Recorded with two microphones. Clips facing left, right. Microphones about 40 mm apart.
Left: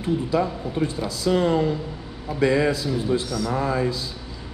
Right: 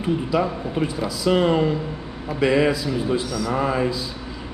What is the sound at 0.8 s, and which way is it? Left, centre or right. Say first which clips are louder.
Speech: right 1 dB; right.